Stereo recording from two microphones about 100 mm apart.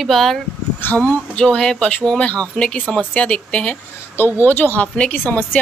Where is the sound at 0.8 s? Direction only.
20° left (ahead or behind).